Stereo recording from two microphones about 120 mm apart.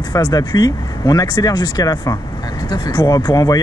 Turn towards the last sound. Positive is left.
turn(degrees=30)  # may be behind; listen again after turning